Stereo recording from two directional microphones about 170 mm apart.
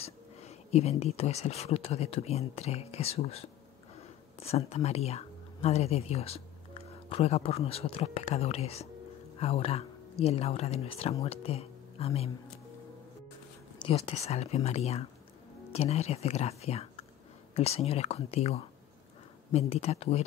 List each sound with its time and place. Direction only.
0.0 s speech: 40° left (ahead or behind)
13.8 s speech: 35° left (ahead or behind)